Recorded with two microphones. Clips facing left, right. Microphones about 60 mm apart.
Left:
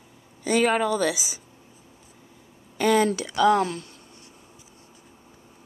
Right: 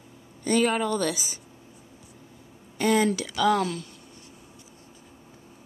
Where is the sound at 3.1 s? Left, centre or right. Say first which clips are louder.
Left 3 dB; left.